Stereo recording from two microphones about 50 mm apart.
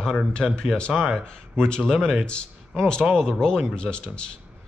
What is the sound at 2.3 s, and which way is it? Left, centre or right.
Speech, centre.